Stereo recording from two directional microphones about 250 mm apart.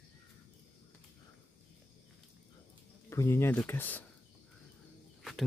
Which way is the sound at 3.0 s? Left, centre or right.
Centre.